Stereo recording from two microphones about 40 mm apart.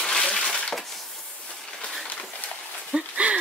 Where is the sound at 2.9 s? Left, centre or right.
Right.